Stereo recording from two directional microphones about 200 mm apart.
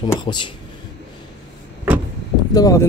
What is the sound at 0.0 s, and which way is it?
Speech, 20° left (ahead or behind).